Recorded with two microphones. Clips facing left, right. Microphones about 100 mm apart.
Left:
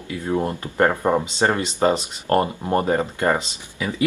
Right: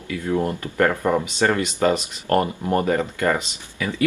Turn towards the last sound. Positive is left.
turn(degrees=25)  # may be behind; listen again after turning